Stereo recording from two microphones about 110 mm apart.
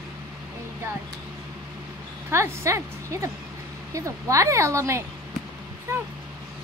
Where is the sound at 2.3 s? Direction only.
25° right (ahead or behind).